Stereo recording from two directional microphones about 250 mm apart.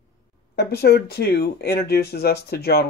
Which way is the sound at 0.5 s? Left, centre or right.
Left.